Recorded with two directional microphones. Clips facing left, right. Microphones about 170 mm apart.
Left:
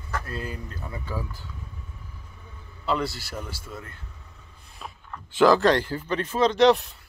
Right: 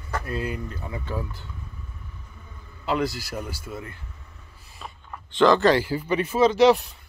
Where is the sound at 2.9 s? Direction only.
Centre (ahead or behind).